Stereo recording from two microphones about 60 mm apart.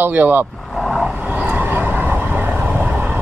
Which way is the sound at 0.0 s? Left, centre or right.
Right.